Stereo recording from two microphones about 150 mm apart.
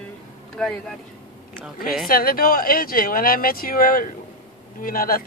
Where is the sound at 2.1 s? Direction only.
75° left (ahead or behind).